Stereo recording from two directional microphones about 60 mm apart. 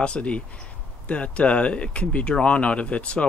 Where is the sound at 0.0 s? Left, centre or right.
Centre.